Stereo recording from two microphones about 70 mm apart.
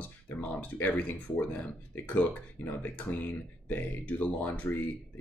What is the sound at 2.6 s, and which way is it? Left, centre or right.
Speech, left.